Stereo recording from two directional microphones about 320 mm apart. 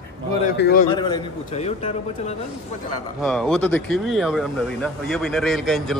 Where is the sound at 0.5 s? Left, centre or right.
Left.